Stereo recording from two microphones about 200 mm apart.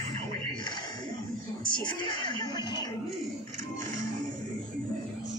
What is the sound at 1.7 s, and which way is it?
Music, 20° left (ahead or behind).